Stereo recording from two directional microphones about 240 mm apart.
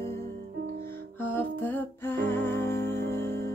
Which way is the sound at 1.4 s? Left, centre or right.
Centre.